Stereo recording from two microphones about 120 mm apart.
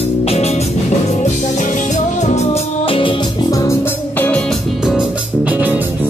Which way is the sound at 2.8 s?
45° left (ahead or behind).